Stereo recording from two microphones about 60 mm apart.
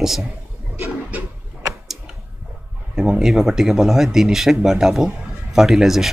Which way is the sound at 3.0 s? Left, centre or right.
Centre.